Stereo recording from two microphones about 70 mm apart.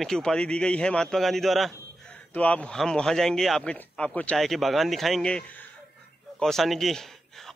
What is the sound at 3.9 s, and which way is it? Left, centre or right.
Speech, centre.